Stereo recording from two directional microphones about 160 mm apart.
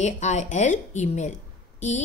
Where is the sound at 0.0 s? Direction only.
45° left (ahead or behind).